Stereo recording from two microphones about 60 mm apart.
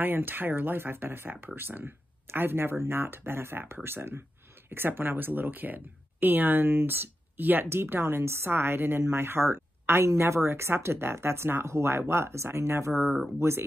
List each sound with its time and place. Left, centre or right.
0.0 s speech: right